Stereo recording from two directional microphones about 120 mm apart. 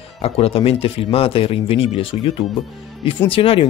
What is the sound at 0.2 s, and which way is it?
Speech, 55° left (ahead or behind).